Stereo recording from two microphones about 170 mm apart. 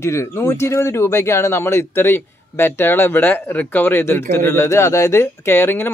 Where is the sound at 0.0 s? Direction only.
15° left (ahead or behind).